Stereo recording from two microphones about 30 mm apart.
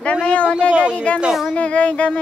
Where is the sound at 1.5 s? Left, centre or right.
Left.